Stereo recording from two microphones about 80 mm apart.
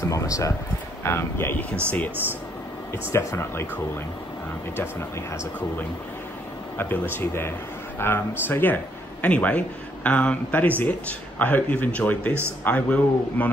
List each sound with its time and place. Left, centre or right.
0.0 s speech: left
1.0 s speech: left
2.9 s speech: left
6.8 s a man's voice: left